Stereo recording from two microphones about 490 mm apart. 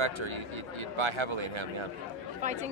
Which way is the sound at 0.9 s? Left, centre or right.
Right.